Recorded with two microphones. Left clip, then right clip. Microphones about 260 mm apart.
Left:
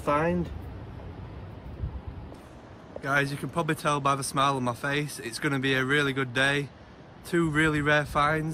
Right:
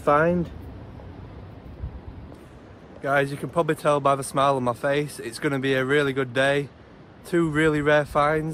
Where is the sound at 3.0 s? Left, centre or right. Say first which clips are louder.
Right 4 dB; centre.